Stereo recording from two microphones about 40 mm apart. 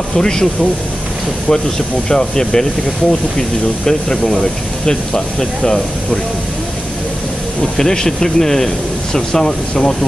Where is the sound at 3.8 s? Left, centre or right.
Centre.